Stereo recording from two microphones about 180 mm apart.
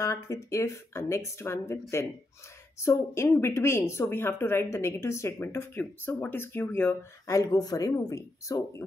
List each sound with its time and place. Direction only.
0.0 s a woman's voice: 15° left (ahead or behind)